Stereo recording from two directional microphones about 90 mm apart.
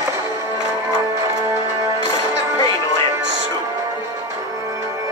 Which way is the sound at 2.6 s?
40° left (ahead or behind).